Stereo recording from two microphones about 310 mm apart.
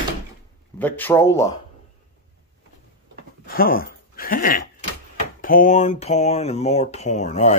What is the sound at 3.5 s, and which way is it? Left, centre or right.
Speech, left.